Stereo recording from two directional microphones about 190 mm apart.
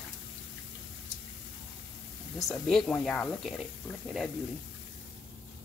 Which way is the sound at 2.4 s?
Centre (ahead or behind).